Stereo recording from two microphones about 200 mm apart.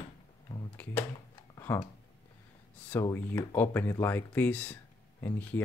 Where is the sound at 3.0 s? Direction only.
15° left (ahead or behind).